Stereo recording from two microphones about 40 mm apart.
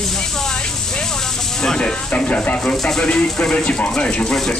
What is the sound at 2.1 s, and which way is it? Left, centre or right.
Speech, left.